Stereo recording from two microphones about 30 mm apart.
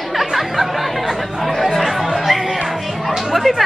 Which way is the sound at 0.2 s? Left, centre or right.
Centre.